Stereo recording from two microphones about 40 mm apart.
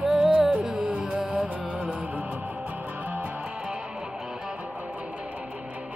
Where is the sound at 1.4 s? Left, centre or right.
Right.